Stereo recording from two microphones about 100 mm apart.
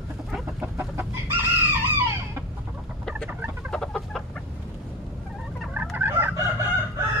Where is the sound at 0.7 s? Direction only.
25° right (ahead or behind).